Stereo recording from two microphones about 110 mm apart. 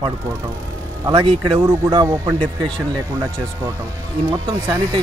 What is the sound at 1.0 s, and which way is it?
Speech, 45° right (ahead or behind).